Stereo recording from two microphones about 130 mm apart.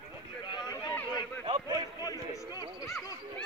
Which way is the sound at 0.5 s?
35° left (ahead or behind).